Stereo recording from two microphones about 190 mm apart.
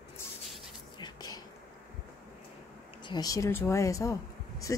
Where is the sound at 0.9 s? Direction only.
20° left (ahead or behind).